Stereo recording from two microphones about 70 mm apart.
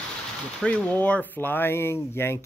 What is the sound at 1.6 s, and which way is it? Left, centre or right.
Speech, left.